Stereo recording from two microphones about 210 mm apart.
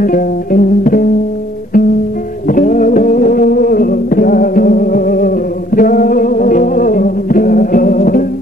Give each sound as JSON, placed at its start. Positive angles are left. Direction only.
{"t": 0.0, "sound": "music", "side_deg": 40}
{"t": 2.4, "sound": "music", "side_deg": 40}